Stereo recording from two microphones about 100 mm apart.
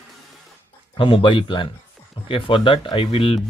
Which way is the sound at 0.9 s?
60° left (ahead or behind).